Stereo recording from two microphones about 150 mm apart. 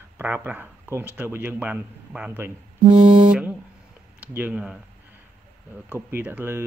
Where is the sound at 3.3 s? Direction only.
10° right (ahead or behind).